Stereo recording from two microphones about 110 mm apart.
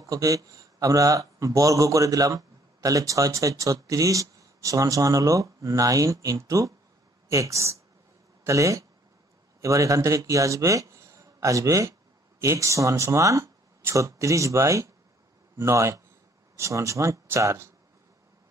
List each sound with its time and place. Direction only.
0.0 s a man's voice: 30° right (ahead or behind)